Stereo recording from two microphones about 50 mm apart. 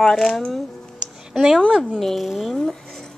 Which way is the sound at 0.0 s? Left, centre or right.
Centre.